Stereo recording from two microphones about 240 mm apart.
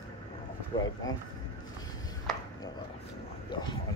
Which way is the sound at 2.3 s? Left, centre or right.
Centre.